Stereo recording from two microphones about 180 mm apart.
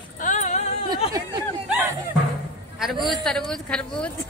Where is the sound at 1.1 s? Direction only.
20° right (ahead or behind).